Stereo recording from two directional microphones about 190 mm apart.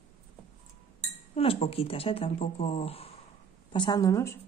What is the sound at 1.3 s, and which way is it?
Speech, 30° left (ahead or behind).